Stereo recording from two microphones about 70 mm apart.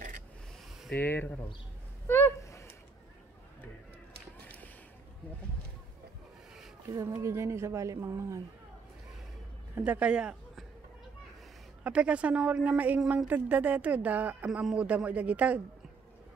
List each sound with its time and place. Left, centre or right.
0.9 s speech: left
2.4 s a sound: left
7.2 s speech: right
9.8 s speech: right
11.8 s speech: centre